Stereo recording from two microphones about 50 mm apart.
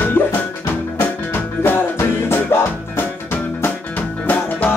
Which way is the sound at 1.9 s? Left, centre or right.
Left.